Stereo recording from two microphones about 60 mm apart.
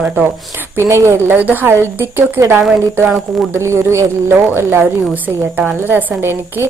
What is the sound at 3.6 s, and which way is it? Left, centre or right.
A woman's voice, right.